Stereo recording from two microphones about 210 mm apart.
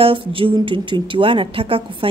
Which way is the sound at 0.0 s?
25° right (ahead or behind).